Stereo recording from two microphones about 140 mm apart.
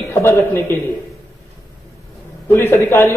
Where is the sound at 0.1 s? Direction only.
20° left (ahead or behind).